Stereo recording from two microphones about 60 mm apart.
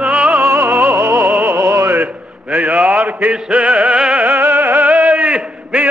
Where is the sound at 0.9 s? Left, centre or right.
Right.